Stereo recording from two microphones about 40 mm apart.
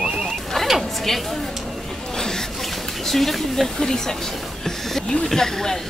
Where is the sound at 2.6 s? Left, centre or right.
Centre.